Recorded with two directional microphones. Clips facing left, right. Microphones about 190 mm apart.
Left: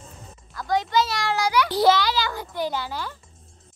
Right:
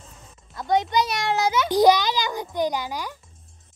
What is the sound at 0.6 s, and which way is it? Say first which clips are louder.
A child's voice: right 1 dB; 20° right (ahead or behind).